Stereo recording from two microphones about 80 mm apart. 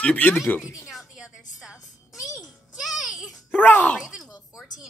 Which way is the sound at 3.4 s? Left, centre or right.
Left.